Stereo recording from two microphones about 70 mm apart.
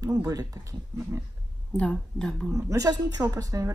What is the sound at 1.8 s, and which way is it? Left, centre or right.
Speech, centre.